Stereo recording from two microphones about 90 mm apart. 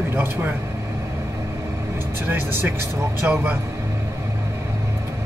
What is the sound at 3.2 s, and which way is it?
Speech, 20° right (ahead or behind).